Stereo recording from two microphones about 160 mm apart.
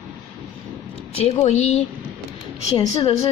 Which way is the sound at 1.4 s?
45° left (ahead or behind).